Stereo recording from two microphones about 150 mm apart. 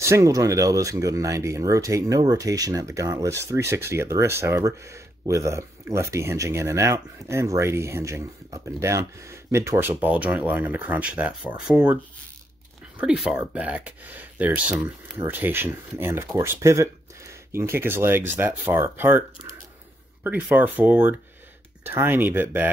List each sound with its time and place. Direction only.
0.0 s speech: 20° right (ahead or behind)
20.2 s speech: 10° right (ahead or behind)